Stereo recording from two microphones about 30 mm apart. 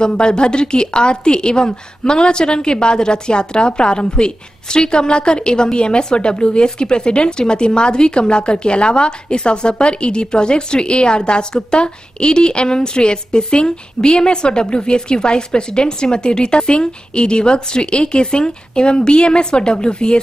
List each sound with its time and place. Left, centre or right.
0.2 s a woman's voice: left